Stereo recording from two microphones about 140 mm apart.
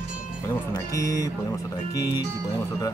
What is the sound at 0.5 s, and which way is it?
Speech, 25° left (ahead or behind).